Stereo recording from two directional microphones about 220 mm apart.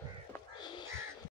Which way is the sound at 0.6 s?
20° left (ahead or behind).